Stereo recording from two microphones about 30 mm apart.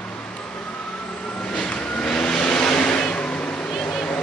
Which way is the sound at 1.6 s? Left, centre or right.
Left.